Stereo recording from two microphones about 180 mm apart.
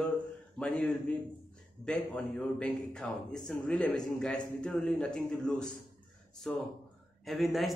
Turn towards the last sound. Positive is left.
turn(degrees=0)  # may be behind; listen again after turning